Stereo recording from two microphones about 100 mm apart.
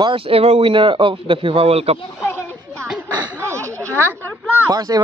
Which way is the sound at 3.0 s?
30° right (ahead or behind).